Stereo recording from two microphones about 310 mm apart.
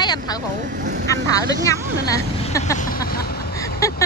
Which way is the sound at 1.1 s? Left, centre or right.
Centre.